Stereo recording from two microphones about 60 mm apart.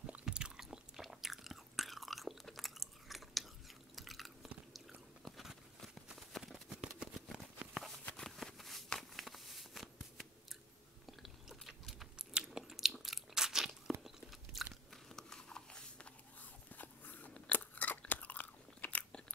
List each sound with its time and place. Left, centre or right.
0.2 s chewing: centre
5.2 s a sound: centre
11.1 s chewing: centre
12.4 s biting: centre
13.0 s crunch: centre
14.0 s biting: centre
15.0 s a sound: centre
16.7 s crunch: left